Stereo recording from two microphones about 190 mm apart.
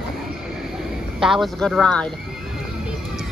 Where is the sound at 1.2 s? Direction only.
Centre (ahead or behind).